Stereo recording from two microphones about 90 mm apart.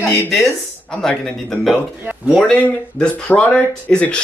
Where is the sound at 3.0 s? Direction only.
15° left (ahead or behind).